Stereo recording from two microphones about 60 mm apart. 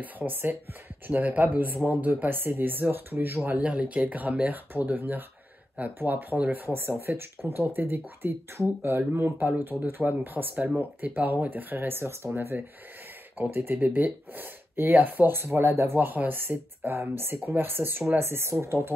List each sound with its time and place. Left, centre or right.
0.0 s speech: right
9.5 s speech: right
12.3 s speech: right